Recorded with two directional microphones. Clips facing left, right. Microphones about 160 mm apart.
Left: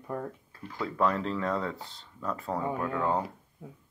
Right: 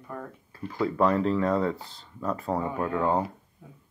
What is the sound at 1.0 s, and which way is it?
Speech, 5° right (ahead or behind).